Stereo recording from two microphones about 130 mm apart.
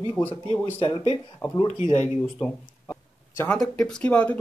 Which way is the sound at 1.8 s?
65° left (ahead or behind).